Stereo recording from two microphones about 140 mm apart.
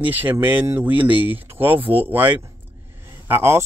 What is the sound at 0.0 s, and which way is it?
Speech, 15° right (ahead or behind).